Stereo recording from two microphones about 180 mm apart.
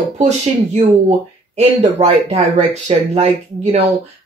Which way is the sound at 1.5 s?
35° right (ahead or behind).